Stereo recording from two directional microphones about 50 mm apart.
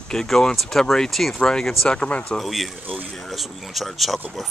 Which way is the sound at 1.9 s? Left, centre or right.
Left.